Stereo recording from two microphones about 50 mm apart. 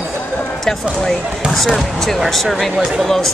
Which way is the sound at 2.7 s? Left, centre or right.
Centre.